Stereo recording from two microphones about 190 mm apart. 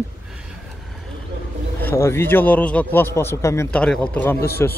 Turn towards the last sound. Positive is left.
turn(degrees=10)  # may be behind; listen again after turning